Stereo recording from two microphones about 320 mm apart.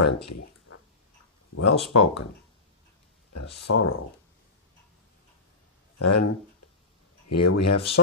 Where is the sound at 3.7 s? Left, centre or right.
Left.